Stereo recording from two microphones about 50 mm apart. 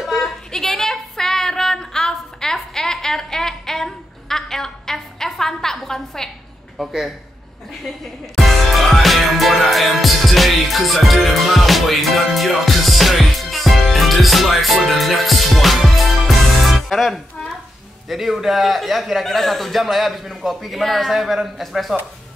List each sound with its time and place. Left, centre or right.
0.2 s female singing: centre
6.8 s a man's voice: centre
8.4 s music: centre
18.0 s a man's voice: centre